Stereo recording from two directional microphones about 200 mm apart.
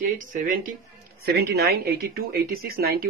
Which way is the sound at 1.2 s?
55° right (ahead or behind).